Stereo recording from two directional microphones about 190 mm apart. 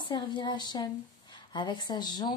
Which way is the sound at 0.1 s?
25° left (ahead or behind).